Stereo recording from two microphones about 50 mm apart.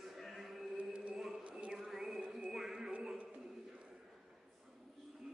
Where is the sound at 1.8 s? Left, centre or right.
Centre.